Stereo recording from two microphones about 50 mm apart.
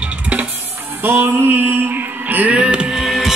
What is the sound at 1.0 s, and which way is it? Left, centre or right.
Music, right.